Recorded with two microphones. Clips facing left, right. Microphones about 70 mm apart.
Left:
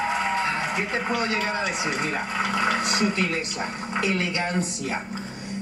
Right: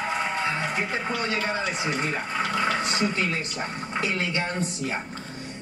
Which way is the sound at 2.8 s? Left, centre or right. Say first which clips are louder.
Left 2 dB; right.